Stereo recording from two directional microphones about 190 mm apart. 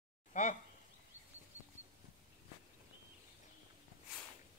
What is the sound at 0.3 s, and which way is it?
Speech, 40° left (ahead or behind).